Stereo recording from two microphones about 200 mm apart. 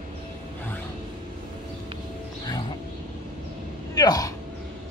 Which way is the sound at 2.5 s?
25° left (ahead or behind).